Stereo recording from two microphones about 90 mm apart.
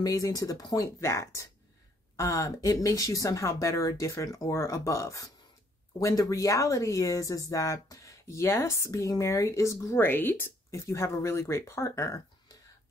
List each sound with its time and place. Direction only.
0.0 s speech: 40° left (ahead or behind)
1.0 s speech: 35° left (ahead or behind)
10.0 s speech: 25° left (ahead or behind)